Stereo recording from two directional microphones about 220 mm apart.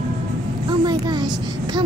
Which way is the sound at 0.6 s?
20° right (ahead or behind).